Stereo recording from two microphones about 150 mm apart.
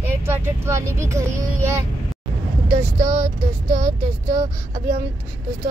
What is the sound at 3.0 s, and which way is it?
Speech, 15° right (ahead or behind).